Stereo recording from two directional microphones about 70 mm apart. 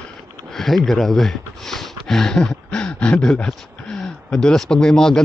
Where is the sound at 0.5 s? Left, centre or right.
Centre.